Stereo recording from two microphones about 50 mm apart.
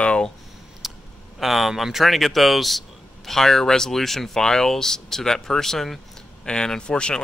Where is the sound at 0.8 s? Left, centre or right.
Centre.